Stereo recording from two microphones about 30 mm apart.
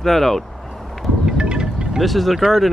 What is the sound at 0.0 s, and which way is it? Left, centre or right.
Speech, centre.